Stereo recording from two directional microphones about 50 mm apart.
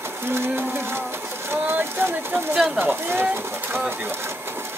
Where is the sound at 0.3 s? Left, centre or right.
Right.